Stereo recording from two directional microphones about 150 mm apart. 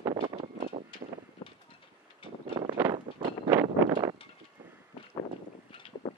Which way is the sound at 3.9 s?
30° right (ahead or behind).